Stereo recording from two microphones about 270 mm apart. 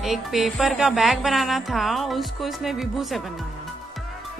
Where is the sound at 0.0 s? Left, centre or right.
Centre.